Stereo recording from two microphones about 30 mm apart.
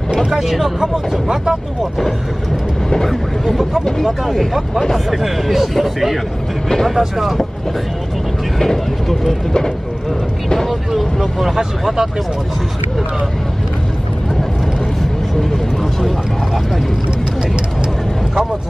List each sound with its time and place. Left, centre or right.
0.3 s speech: centre
1.8 s speech: centre
7.0 s speech: centre
10.7 s vehicle: centre
11.5 s speech: centre